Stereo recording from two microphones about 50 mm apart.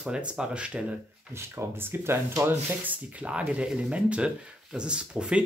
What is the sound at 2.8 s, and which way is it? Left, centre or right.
Speech, right.